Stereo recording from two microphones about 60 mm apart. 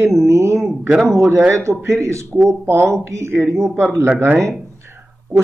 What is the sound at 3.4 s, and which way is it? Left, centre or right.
Speech, centre.